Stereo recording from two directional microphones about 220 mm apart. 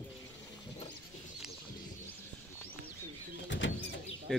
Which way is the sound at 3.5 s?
55° left (ahead or behind).